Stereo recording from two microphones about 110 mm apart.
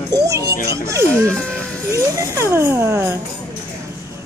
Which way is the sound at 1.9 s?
25° right (ahead or behind).